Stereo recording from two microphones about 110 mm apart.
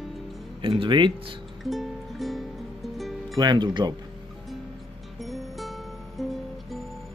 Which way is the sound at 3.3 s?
40° right (ahead or behind).